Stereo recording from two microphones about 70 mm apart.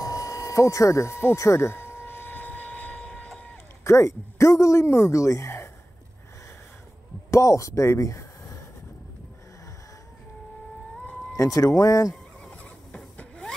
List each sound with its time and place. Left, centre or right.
0.0 s a sound: left; by 3.3 s centre
3.8 s speech: left
7.2 s speech: left
11.3 s speech: left
12.4 s vehicle: centre